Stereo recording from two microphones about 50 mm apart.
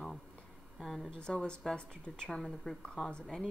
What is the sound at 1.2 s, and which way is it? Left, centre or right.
Speech, centre.